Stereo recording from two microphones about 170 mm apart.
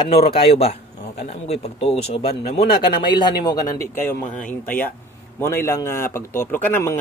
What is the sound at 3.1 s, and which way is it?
Speech, 25° left (ahead or behind).